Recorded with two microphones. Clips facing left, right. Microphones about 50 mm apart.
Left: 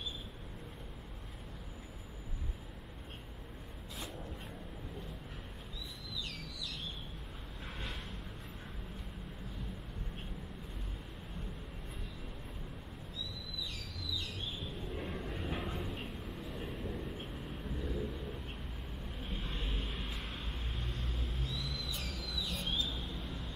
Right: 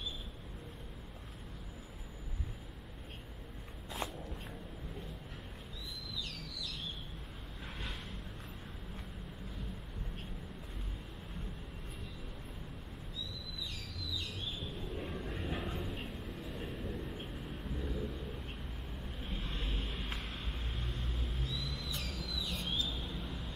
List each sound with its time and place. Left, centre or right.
14.9 s vehicle: centre
22.1 s a sound: centre
22.8 s vehicle: centre